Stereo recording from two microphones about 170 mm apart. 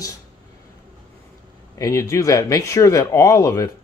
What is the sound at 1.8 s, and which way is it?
Speech, 20° left (ahead or behind).